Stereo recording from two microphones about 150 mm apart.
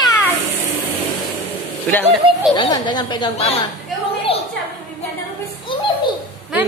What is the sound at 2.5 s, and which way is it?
Speech, 30° left (ahead or behind).